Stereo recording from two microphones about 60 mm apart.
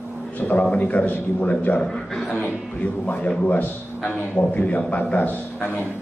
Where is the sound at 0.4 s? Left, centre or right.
Left.